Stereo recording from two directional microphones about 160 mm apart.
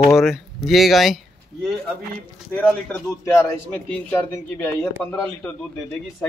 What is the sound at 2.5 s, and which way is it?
A man's voice, 10° left (ahead or behind).